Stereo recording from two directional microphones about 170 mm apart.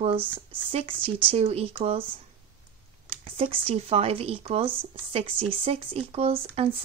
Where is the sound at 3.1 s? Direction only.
35° right (ahead or behind).